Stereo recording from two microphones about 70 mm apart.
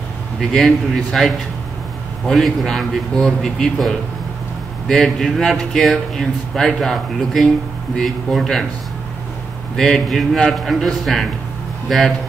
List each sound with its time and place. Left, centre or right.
0.4 s a man's voice: centre
9.8 s a man's voice: centre